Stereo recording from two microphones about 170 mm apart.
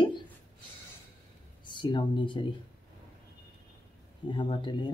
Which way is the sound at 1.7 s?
25° left (ahead or behind).